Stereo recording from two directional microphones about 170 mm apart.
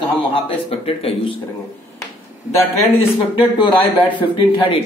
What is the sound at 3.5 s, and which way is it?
Speech, 30° left (ahead or behind).